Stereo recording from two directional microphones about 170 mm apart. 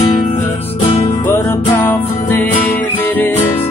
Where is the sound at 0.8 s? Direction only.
35° left (ahead or behind).